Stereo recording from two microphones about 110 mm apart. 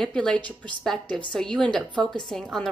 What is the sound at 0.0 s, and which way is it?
A woman's voice, 5° left (ahead or behind).